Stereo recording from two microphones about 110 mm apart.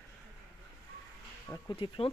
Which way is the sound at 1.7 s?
55° left (ahead or behind).